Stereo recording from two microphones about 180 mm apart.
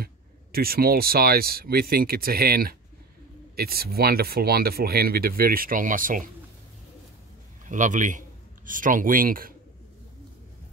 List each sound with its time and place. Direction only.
0.0 s speech: 55° right (ahead or behind)
7.6 s speech: 45° right (ahead or behind)